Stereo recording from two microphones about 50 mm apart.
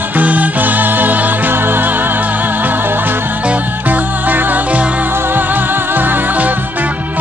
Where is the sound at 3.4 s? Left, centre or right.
Right.